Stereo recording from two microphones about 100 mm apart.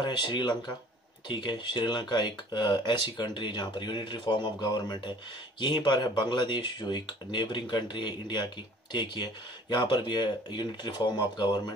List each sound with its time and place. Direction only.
0.0 s speech: 50° left (ahead or behind)